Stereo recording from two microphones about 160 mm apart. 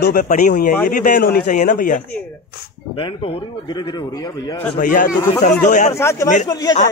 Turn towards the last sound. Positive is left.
turn(degrees=25)  # may be behind; listen again after turning